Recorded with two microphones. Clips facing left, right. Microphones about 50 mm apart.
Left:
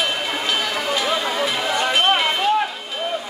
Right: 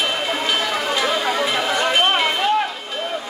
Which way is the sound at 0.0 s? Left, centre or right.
Centre.